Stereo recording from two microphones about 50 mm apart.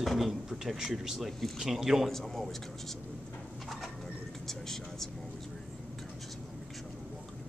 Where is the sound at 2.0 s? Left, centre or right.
Centre.